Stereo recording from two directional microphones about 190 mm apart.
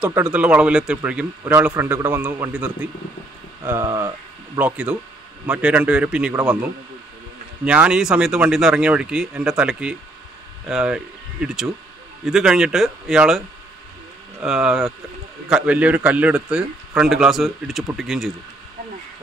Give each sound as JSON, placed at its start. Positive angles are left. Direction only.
{"t": 0.0, "sound": "a man's voice", "side_deg": -5}
{"t": 4.6, "sound": "a man's voice", "side_deg": -5}
{"t": 7.6, "sound": "a man's voice", "side_deg": -5}
{"t": 14.4, "sound": "a man's voice", "side_deg": -5}